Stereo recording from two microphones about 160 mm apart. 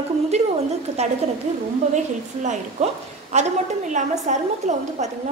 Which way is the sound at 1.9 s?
50° right (ahead or behind).